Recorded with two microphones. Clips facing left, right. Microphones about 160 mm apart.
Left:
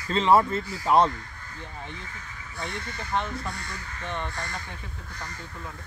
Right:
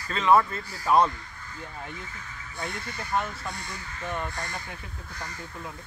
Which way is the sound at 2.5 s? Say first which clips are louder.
Even; 5° right (ahead or behind).